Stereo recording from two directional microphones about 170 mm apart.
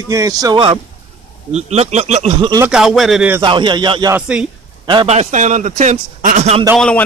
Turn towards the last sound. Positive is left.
turn(degrees=5)  # may be behind; listen again after turning